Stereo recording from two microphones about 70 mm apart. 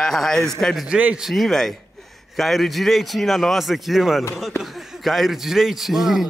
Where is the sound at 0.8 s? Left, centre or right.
Centre.